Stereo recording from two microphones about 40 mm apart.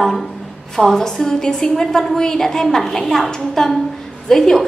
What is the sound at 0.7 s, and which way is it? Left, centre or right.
A woman's voice, centre.